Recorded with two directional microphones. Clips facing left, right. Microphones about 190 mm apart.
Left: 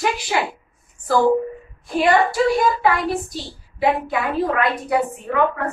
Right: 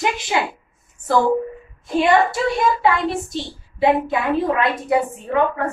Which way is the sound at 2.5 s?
25° right (ahead or behind).